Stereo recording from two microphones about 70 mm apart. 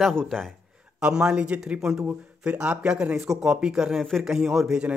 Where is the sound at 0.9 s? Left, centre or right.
Centre.